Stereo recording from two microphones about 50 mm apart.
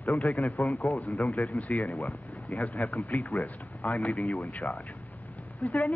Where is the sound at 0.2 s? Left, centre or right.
Left.